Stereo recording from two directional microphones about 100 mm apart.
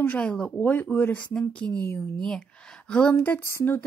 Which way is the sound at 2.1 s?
5° left (ahead or behind).